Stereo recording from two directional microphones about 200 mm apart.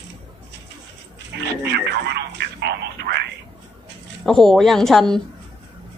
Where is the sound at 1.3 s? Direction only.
60° right (ahead or behind).